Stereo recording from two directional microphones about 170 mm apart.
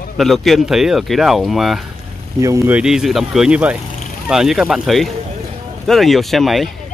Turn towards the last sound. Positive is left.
turn(degrees=0)  # may be behind; listen again after turning